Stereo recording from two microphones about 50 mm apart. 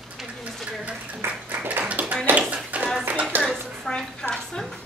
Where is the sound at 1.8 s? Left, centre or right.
Right.